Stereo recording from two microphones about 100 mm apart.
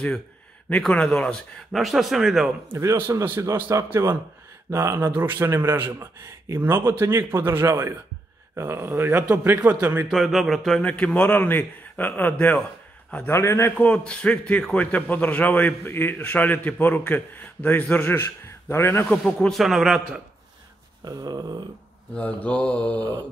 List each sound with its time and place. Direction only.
0.7 s speech: 10° left (ahead or behind)
2.7 s a man's voice: 30° right (ahead or behind)
10.0 s speech: centre (ahead or behind)
10.8 s a man's voice: 15° left (ahead or behind)
13.7 s a man's voice: 15° left (ahead or behind)
19.0 s speech: 5° left (ahead or behind)
21.0 s a sound: 45° right (ahead or behind)
22.1 s a man's voice: 10° left (ahead or behind)